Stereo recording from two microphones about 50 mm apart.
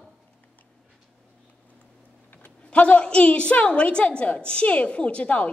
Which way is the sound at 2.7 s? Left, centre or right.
Left.